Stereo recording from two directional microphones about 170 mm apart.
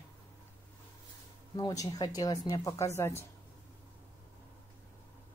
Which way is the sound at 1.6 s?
20° left (ahead or behind).